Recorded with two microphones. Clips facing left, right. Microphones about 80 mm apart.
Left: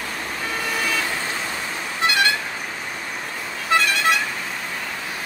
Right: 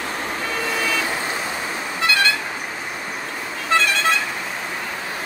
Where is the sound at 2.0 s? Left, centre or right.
Left.